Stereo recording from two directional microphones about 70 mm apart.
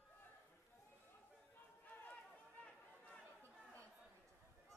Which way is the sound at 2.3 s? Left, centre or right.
Centre.